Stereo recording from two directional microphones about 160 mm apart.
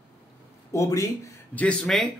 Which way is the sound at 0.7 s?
20° left (ahead or behind).